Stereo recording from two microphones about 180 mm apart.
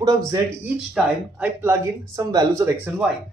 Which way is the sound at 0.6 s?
10° right (ahead or behind).